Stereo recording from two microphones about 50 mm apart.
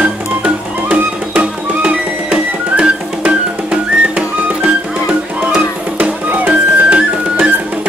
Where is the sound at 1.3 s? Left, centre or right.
Right.